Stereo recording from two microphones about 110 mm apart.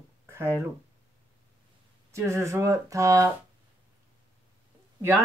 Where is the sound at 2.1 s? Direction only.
25° right (ahead or behind).